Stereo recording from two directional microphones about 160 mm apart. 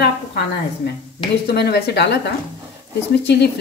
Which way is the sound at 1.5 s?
75° left (ahead or behind).